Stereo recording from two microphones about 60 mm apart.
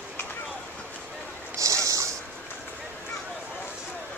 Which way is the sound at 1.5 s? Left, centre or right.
Right.